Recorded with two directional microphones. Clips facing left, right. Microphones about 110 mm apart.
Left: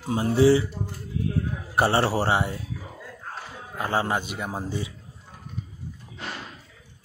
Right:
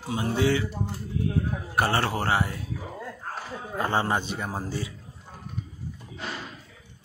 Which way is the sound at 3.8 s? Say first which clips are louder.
Even; 5° left (ahead or behind).